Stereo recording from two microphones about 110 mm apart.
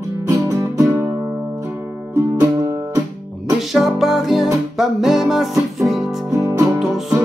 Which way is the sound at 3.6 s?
5° right (ahead or behind).